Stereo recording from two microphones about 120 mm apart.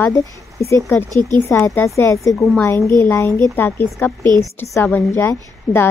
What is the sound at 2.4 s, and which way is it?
Speech, centre (ahead or behind).